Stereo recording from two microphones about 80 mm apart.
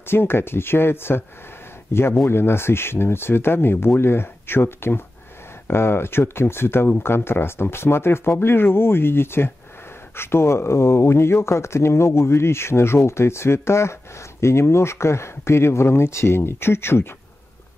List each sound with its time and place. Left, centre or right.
0.0 s speech: left